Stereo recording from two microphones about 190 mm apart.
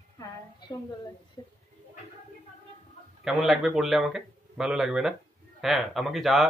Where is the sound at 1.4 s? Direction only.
25° left (ahead or behind).